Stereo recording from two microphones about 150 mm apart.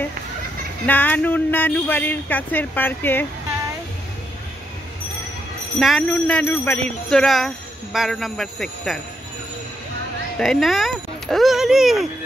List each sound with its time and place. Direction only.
0.8 s speech: 10° left (ahead or behind)
5.8 s speech: centre (ahead or behind); by 6.8 s 15° left (ahead or behind)
7.1 s speech: centre (ahead or behind)
10.4 s speech: centre (ahead or behind)